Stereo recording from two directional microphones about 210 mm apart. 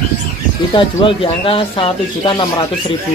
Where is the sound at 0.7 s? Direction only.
25° left (ahead or behind).